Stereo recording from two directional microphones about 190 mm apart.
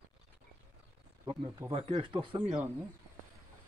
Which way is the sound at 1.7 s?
25° right (ahead or behind).